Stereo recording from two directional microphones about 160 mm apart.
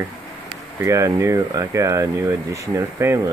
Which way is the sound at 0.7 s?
20° right (ahead or behind).